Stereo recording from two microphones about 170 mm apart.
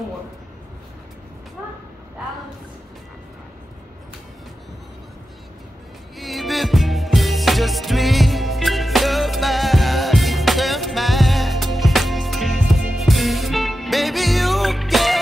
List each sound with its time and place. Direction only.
6.1 s music: centre (ahead or behind)